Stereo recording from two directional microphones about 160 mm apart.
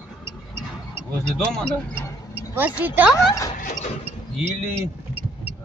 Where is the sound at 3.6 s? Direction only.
55° left (ahead or behind).